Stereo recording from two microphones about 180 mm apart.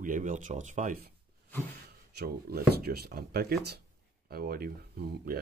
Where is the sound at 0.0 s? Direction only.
45° right (ahead or behind).